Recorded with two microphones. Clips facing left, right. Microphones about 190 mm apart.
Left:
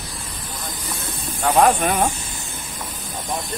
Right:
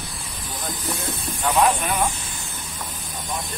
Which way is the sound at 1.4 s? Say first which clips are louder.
Left 4 dB; 50° left (ahead or behind).